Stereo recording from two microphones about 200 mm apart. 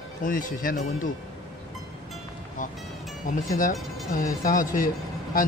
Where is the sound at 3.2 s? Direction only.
40° left (ahead or behind).